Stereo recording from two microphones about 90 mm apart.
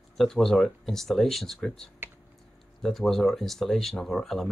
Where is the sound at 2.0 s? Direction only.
25° right (ahead or behind).